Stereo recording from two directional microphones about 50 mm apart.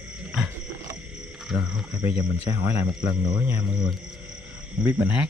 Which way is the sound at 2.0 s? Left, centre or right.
Right.